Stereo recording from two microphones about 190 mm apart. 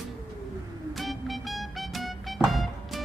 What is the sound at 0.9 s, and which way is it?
Music, centre (ahead or behind).